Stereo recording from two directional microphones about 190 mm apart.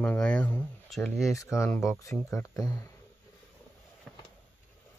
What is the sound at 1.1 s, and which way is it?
Speech, 15° left (ahead or behind).